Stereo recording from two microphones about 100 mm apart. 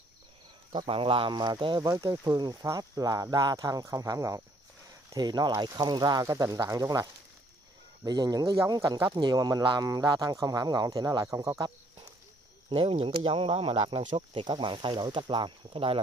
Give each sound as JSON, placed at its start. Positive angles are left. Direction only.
{"t": 0.8, "sound": "speech", "side_deg": -65}
{"t": 5.1, "sound": "speech", "side_deg": -45}
{"t": 12.6, "sound": "speech", "side_deg": -55}